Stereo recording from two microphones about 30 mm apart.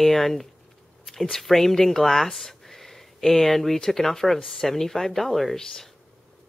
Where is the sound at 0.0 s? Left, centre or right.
Centre.